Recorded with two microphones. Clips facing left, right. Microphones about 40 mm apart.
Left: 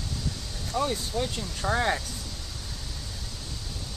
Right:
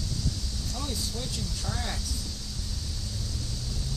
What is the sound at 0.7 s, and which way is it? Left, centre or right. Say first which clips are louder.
Speech: left 9 dB; left.